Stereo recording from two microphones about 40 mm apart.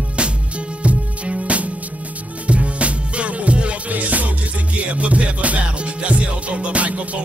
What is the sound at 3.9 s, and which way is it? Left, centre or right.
Music, right.